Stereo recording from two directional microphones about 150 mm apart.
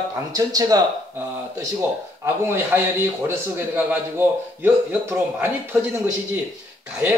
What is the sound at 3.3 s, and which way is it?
A man's voice, 15° right (ahead or behind).